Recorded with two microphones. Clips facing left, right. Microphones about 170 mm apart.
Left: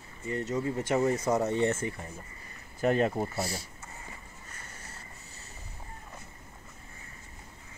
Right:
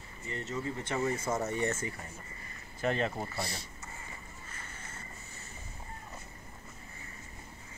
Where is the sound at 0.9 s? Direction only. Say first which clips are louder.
Left 6 dB; 35° left (ahead or behind).